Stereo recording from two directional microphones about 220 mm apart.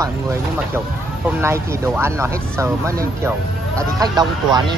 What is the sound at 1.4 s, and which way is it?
Speech, 10° right (ahead or behind).